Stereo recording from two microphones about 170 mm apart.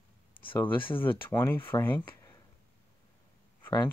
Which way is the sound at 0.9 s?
10° left (ahead or behind).